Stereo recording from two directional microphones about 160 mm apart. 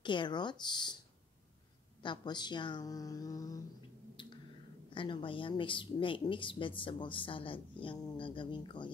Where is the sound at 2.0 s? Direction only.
30° left (ahead or behind).